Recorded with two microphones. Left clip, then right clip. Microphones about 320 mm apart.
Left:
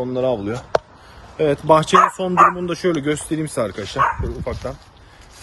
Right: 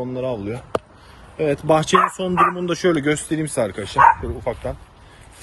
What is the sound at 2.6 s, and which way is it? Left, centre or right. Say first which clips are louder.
Speech: right 1 dB; centre.